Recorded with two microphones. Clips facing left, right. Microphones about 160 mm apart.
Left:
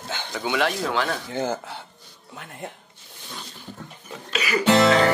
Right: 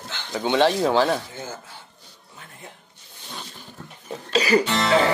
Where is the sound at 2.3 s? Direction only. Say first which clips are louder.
Left 8 dB; 70° left (ahead or behind).